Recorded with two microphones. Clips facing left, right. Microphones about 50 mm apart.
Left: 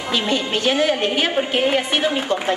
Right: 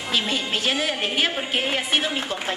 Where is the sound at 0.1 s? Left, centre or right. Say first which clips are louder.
Left 4 dB; centre.